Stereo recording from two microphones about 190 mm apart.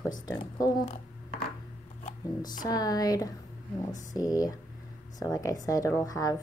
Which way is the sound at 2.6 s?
20° left (ahead or behind).